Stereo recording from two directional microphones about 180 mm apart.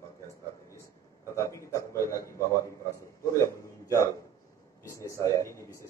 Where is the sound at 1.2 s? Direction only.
15° left (ahead or behind).